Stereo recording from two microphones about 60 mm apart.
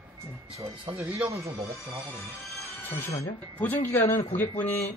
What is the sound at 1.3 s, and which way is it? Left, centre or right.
Speech, right.